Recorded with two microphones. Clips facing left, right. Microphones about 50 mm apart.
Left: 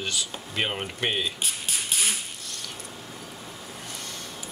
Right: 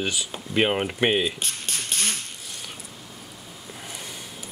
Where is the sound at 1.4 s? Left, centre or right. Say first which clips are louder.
Even; centre.